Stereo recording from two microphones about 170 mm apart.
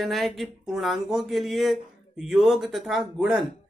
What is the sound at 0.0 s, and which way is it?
Speech, centre (ahead or behind).